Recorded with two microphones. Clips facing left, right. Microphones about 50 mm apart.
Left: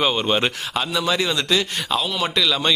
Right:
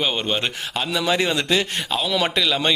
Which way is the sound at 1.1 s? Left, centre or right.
Right.